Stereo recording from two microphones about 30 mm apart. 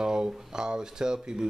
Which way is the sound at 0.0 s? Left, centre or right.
Right.